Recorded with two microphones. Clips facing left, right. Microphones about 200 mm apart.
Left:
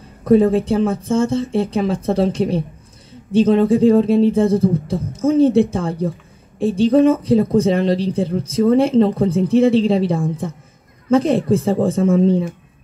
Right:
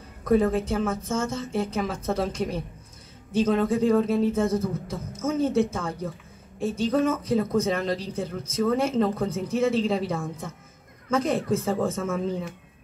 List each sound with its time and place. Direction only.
0.2 s speech: 30° left (ahead or behind)